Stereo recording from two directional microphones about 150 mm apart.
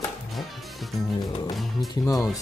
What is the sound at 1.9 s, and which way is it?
Speech, 20° left (ahead or behind).